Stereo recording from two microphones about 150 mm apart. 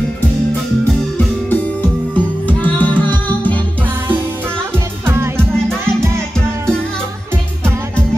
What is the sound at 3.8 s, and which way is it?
Music, 15° right (ahead or behind).